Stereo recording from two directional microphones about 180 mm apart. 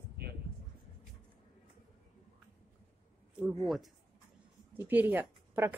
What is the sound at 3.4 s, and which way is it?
Speech, centre (ahead or behind).